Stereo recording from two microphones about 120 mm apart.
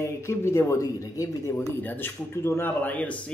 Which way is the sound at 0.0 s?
20° left (ahead or behind).